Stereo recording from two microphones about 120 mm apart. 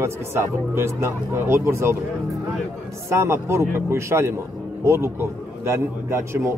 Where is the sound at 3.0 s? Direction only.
25° right (ahead or behind).